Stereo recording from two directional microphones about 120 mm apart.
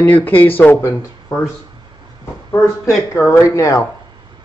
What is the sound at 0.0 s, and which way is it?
Speech, 15° left (ahead or behind).